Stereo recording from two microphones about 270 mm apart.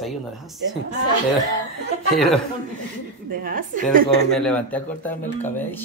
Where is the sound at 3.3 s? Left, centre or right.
Right.